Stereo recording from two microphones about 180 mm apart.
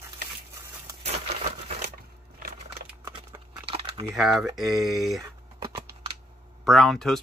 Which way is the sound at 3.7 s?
35° right (ahead or behind).